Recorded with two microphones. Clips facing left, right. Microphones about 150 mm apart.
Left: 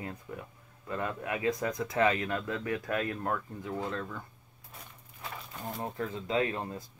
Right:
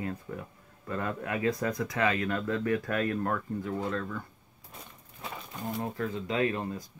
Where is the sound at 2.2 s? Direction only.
15° left (ahead or behind).